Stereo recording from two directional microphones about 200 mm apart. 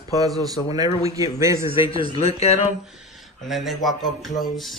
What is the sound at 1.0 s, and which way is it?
Speech, 15° right (ahead or behind).